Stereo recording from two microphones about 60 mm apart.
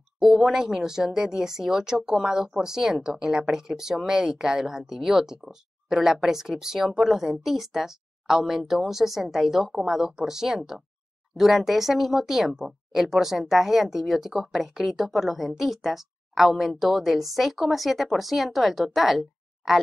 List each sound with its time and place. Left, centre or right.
0.2 s speech: centre